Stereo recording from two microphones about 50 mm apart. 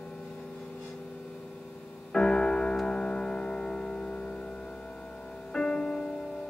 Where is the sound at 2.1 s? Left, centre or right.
Centre.